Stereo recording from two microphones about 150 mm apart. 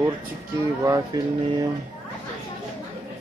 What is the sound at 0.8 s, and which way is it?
Speech, 25° right (ahead or behind).